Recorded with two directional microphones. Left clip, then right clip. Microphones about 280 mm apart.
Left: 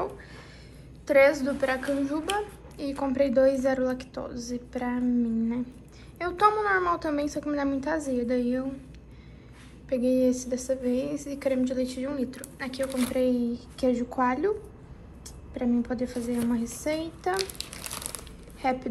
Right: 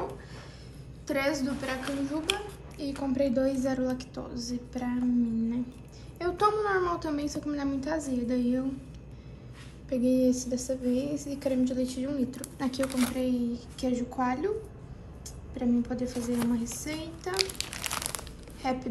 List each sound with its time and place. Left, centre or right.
1.0 s a woman's voice: centre
9.8 s a woman's voice: centre
12.8 s a woman's voice: centre
15.5 s a woman's voice: centre